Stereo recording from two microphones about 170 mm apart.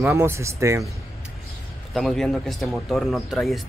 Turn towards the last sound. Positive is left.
turn(degrees=0)  # may be behind; listen again after turning